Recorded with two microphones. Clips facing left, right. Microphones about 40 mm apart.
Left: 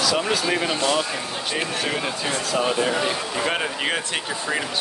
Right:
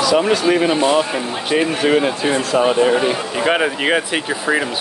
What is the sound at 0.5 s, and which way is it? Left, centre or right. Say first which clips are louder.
Speech: right 7 dB; right.